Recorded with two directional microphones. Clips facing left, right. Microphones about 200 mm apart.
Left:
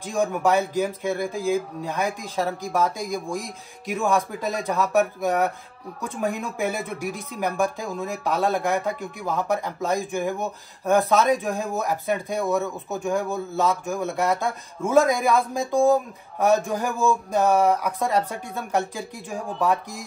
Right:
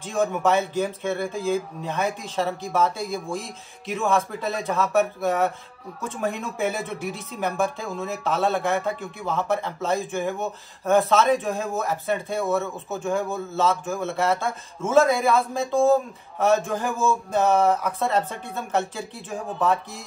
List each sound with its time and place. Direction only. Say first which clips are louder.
0.0 s speech: even; 15° left (ahead or behind)